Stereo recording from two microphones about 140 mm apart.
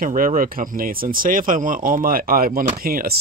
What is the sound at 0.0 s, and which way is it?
Speech, 70° right (ahead or behind).